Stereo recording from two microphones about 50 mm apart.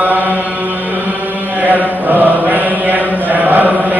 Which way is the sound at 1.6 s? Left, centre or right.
Right.